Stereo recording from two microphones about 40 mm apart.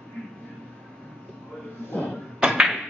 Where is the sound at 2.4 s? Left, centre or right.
Centre.